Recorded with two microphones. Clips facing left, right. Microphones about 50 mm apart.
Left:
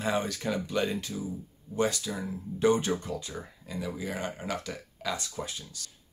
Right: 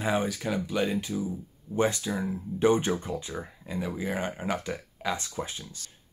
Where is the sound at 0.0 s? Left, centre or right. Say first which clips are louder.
Right 2 dB; centre.